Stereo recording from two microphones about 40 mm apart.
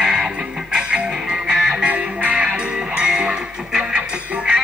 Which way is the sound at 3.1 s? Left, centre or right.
Centre.